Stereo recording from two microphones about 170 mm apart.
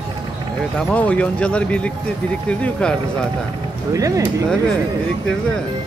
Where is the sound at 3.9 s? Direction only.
20° right (ahead or behind).